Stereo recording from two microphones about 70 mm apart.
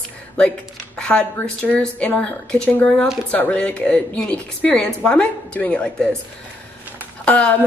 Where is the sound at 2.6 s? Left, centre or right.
Left.